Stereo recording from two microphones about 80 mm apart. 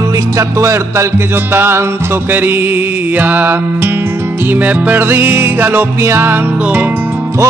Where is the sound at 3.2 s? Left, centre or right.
Right.